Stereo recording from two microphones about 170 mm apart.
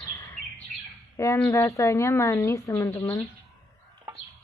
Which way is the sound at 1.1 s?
15° left (ahead or behind).